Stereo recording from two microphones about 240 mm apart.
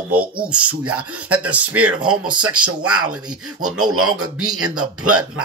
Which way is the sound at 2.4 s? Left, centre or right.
Right.